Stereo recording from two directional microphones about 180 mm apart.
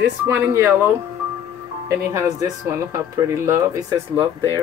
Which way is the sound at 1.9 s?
15° right (ahead or behind).